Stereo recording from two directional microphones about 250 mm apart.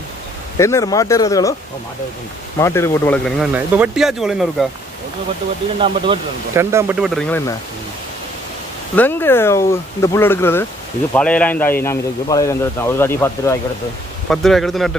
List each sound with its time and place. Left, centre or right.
0.6 s a man's voice: centre
2.6 s speech: centre
6.1 s speech: centre
8.9 s a man's voice: centre